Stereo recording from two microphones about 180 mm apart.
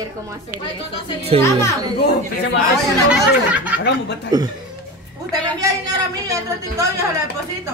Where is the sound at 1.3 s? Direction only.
35° right (ahead or behind).